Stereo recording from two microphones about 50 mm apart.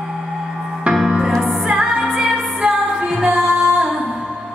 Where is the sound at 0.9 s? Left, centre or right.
Centre.